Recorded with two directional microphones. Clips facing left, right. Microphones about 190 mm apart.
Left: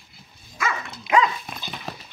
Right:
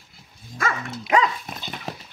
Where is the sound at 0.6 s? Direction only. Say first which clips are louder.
Right 1 dB; 40° right (ahead or behind).